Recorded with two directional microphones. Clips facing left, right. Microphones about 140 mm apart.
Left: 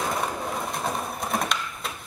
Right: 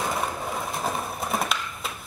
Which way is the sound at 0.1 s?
Centre (ahead or behind).